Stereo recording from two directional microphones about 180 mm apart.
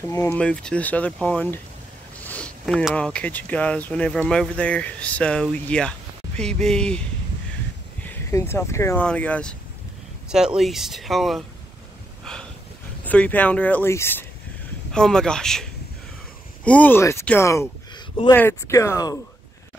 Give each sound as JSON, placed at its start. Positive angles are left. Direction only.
{"t": 0.1, "sound": "speech", "side_deg": 20}
{"t": 0.4, "sound": "speech", "side_deg": 5}
{"t": 10.2, "sound": "speech", "side_deg": -5}
{"t": 12.3, "sound": "a sound", "side_deg": 5}
{"t": 13.0, "sound": "speech", "side_deg": 10}